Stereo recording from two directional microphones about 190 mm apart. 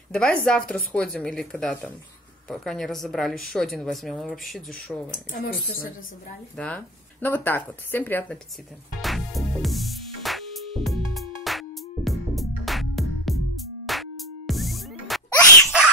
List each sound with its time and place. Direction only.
0.1 s a woman's voice: 5° left (ahead or behind)
5.1 s speech: 50° left (ahead or behind)
6.5 s speech: 5° left (ahead or behind)
9.0 s music: centre (ahead or behind)